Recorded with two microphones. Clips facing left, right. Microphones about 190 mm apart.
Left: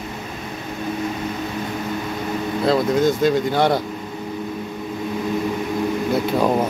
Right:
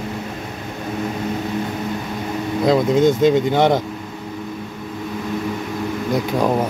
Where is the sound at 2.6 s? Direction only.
20° right (ahead or behind).